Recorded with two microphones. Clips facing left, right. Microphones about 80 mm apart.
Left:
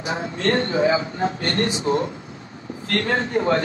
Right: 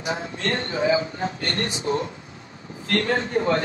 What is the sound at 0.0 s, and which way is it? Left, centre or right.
A man's voice, left.